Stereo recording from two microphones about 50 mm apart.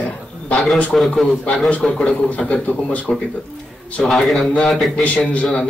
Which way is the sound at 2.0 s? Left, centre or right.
Left.